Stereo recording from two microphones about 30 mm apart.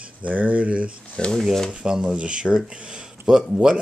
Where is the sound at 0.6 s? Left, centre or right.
Right.